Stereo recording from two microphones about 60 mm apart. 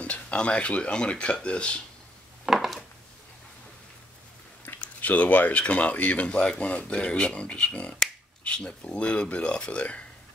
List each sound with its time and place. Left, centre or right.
0.0 s speech: left
2.4 s a sound: centre
4.7 s speech: left